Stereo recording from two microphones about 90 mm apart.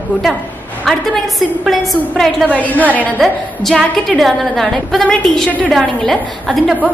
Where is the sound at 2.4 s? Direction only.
15° left (ahead or behind).